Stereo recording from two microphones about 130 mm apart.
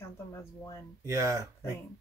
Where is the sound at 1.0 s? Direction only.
25° right (ahead or behind).